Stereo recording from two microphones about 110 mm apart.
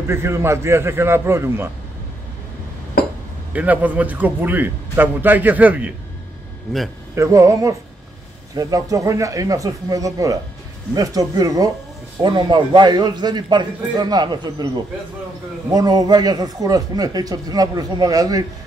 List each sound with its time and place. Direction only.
0.1 s a man's voice: 25° right (ahead or behind)
3.5 s a man's voice: 15° right (ahead or behind)
7.2 s a man's voice: 25° right (ahead or behind)
15.7 s speech: 35° right (ahead or behind)